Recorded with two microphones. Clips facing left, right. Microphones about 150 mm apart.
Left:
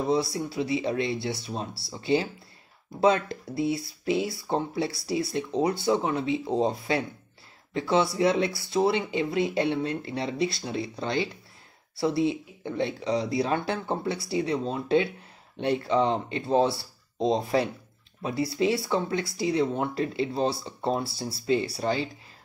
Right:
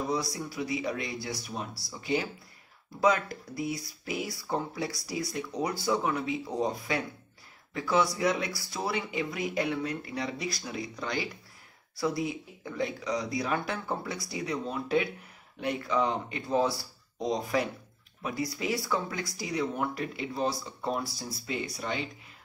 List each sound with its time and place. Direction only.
0.0 s speech: 25° left (ahead or behind)